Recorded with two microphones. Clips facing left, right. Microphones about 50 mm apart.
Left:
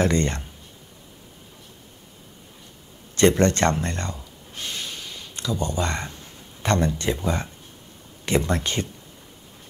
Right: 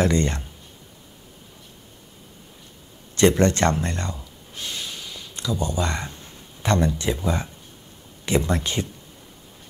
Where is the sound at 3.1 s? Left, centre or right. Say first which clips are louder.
Even; left.